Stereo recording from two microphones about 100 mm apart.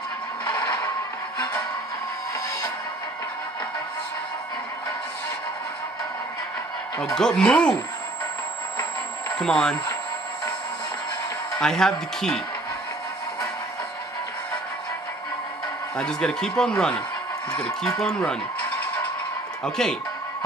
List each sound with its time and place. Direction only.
0.5 s music: 45° left (ahead or behind)
7.2 s speech: 5° left (ahead or behind)
9.4 s speech: 5° left (ahead or behind)
11.5 s speech: 5° left (ahead or behind)
16.0 s speech: 5° left (ahead or behind)
19.6 s speech: 5° left (ahead or behind)